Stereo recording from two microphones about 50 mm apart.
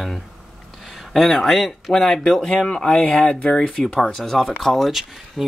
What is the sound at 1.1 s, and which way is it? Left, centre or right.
Speech, centre.